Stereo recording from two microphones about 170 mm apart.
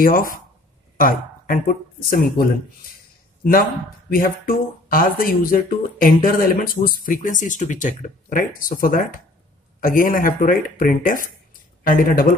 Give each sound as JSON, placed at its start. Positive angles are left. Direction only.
{"t": 0.0, "sound": "speech", "side_deg": 55}
{"t": 4.1, "sound": "speech", "side_deg": 55}